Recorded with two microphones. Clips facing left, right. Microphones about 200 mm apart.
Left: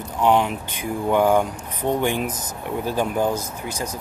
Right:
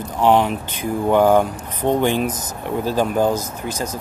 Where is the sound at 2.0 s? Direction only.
15° left (ahead or behind).